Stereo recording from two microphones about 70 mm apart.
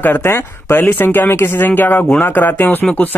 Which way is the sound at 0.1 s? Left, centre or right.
Left.